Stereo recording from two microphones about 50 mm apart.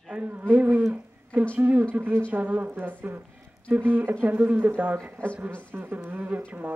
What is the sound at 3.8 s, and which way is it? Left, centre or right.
Speech, right.